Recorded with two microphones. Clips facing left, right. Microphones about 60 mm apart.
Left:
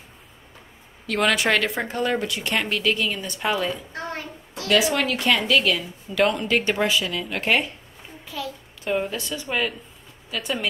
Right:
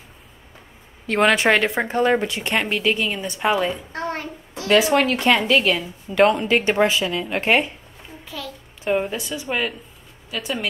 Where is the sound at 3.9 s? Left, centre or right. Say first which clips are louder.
Right 4 dB; right.